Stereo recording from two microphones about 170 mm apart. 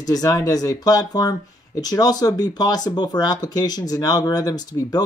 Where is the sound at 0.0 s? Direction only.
20° left (ahead or behind).